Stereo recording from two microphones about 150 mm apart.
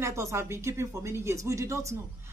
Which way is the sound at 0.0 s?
20° right (ahead or behind).